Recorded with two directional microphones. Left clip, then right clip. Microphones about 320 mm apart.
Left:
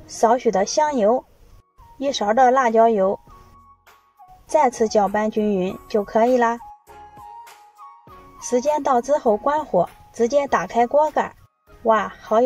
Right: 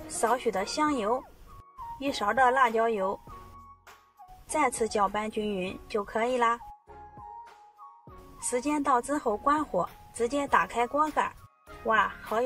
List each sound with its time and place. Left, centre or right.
0.2 s speech: centre
2.2 s speech: centre
4.5 s speech: centre
6.9 s music: left
8.5 s speech: centre